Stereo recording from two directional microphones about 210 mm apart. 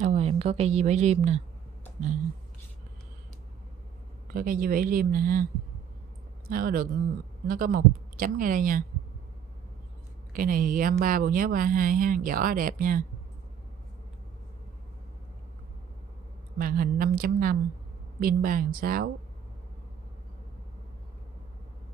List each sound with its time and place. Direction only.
0.0 s a woman's voice: 30° right (ahead or behind)
4.3 s a woman's voice: 45° right (ahead or behind)
10.3 s a woman's voice: 40° right (ahead or behind)
16.5 s speech: 45° right (ahead or behind)